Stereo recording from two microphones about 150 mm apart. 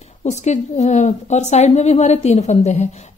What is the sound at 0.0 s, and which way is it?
A woman's voice, 50° left (ahead or behind).